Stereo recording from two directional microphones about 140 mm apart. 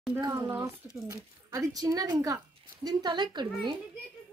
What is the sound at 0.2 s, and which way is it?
Speech, 25° right (ahead or behind).